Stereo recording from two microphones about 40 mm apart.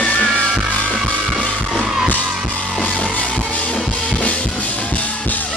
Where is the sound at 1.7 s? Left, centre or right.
Right.